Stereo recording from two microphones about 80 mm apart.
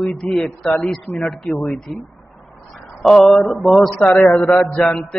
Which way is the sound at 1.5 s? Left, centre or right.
Left.